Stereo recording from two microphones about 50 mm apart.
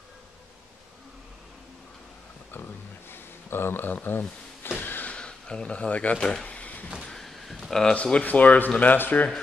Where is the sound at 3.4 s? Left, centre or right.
Left.